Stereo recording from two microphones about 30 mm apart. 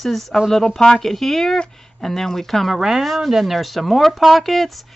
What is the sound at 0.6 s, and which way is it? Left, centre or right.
Speech, centre.